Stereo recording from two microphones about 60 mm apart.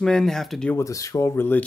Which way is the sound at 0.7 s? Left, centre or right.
Left.